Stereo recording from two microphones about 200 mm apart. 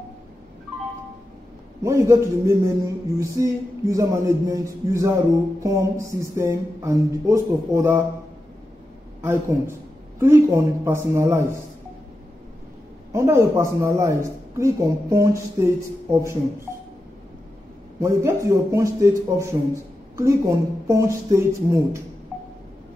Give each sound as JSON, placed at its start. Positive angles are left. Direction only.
{"t": 1.8, "sound": "a man's voice", "side_deg": -15}
{"t": 9.2, "sound": "a man's voice", "side_deg": -15}
{"t": 13.1, "sound": "a man's voice", "side_deg": -15}
{"t": 18.0, "sound": "a man's voice", "side_deg": -15}